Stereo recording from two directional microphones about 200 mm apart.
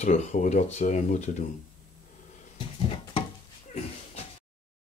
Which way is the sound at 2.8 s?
30° left (ahead or behind).